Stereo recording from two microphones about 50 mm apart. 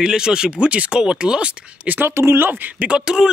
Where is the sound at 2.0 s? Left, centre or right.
Right.